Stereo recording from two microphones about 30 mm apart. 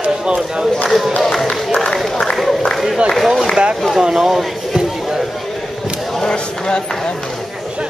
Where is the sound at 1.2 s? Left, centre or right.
Centre.